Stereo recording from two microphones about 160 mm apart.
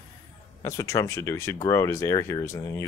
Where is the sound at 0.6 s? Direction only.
20° left (ahead or behind).